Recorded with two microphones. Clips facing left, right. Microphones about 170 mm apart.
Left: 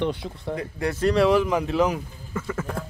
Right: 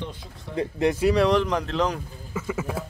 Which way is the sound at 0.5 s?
20° right (ahead or behind).